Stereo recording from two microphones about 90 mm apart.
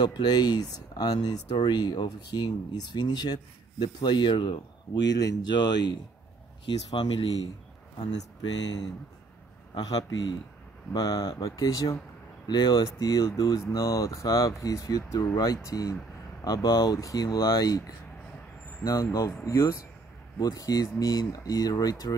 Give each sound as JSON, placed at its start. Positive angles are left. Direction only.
{"t": 0.0, "sound": "speech", "side_deg": 50}
{"t": 5.0, "sound": "speech", "side_deg": 45}
{"t": 8.0, "sound": "speech", "side_deg": 45}
{"t": 12.4, "sound": "speech", "side_deg": 55}